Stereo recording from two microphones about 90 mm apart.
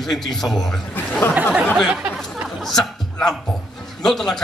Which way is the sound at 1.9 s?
10° right (ahead or behind).